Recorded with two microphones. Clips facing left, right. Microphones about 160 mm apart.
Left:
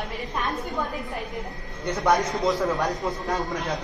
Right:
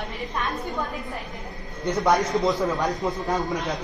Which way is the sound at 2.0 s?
Centre (ahead or behind).